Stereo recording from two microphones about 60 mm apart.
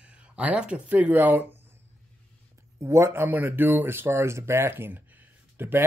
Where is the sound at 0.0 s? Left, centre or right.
Centre; by 1.6 s right.